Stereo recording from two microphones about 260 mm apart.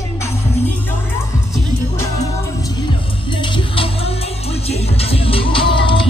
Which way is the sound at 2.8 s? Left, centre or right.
Centre.